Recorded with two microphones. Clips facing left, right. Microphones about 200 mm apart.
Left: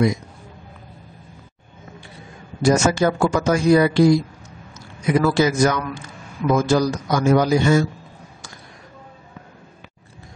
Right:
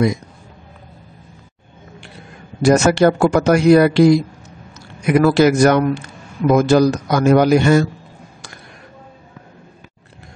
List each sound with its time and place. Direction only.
2.6 s a man's voice: 70° right (ahead or behind)